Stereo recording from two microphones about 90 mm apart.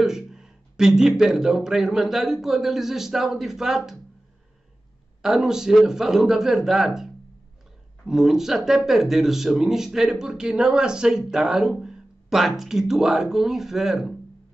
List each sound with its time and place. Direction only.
0.0 s speech: 5° right (ahead or behind)
5.2 s speech: 5° right (ahead or behind)